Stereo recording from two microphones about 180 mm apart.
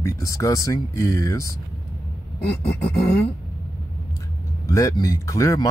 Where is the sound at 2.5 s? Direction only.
65° left (ahead or behind).